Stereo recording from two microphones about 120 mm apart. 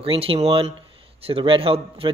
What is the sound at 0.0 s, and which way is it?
A man's voice, 50° right (ahead or behind).